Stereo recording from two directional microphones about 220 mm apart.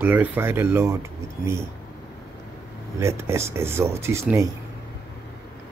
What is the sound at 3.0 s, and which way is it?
Speech, 10° right (ahead or behind).